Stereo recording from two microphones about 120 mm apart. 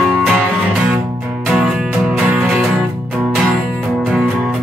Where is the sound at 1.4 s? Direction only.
5° right (ahead or behind).